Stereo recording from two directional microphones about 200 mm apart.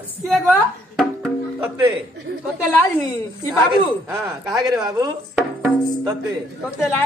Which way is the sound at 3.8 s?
20° right (ahead or behind).